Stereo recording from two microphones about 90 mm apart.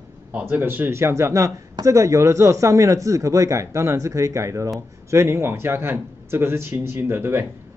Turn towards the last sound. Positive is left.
turn(degrees=-25)  # may be behind; listen again after turning